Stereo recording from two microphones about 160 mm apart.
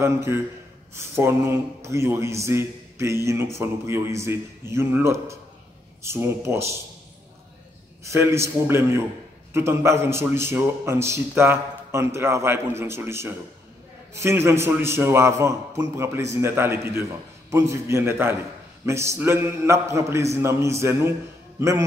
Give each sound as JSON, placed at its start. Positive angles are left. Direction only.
{"t": 0.0, "sound": "speech", "side_deg": -15}
{"t": 8.0, "sound": "a man's voice", "side_deg": -20}